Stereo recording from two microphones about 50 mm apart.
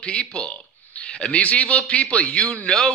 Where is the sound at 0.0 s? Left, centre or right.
Left.